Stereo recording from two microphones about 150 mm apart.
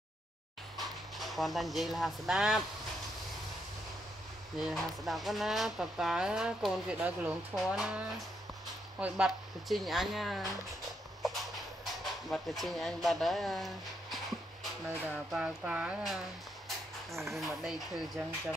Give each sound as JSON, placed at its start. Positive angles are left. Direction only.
{"t": 0.7, "sound": "speech", "side_deg": 0}
{"t": 4.6, "sound": "speech", "side_deg": 0}
{"t": 9.0, "sound": "speech", "side_deg": -5}
{"t": 11.8, "sound": "speech", "side_deg": 0}
{"t": 15.1, "sound": "speech", "side_deg": -5}
{"t": 17.1, "sound": "speech", "side_deg": -20}
{"t": 17.4, "sound": "speech", "side_deg": 0}